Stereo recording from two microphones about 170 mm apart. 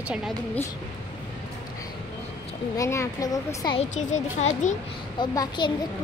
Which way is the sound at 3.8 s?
40° left (ahead or behind).